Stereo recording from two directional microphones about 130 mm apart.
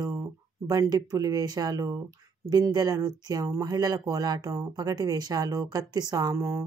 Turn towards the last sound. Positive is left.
turn(degrees=-20)  # may be behind; listen again after turning